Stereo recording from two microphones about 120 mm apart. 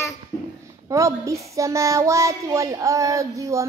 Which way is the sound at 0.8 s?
25° right (ahead or behind).